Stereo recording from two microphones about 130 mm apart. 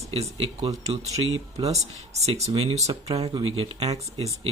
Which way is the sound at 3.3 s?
45° right (ahead or behind).